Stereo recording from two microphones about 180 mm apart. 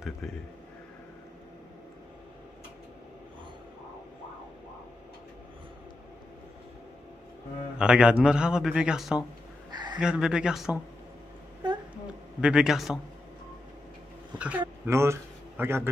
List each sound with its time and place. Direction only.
0.0 s a man's voice: 5° left (ahead or behind)
7.8 s a man's voice: 5° right (ahead or behind)
9.7 s a sound: 25° right (ahead or behind)
9.9 s a man's voice: 5° right (ahead or behind)
12.4 s a man's voice: 5° right (ahead or behind)
14.4 s speech: 10° right (ahead or behind)